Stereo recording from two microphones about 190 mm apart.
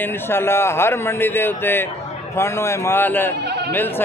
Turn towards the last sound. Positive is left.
turn(degrees=-60)  # may be behind; listen again after turning